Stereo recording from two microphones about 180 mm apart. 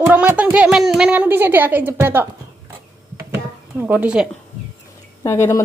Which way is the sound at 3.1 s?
15° right (ahead or behind).